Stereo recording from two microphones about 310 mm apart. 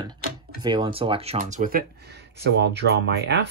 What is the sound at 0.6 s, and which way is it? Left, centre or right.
Speech, centre.